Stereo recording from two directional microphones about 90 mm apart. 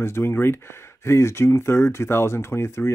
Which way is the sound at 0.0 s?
30° left (ahead or behind).